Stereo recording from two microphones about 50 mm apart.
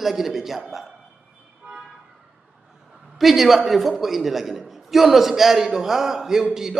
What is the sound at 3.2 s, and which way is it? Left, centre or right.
A man's voice, centre.